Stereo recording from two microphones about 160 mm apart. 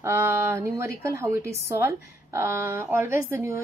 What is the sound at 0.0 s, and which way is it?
A woman's voice, 15° right (ahead or behind).